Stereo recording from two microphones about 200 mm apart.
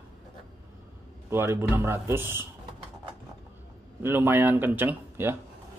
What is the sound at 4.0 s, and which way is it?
Speech, 10° right (ahead or behind).